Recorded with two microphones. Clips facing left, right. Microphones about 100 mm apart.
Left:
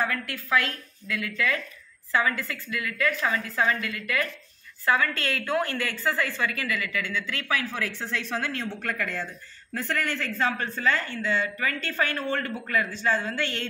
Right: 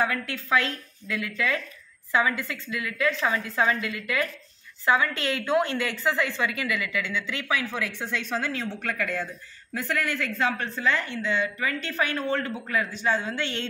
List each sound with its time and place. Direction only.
0.0 s a woman's voice: 20° right (ahead or behind)
8.8 s speech: 5° right (ahead or behind)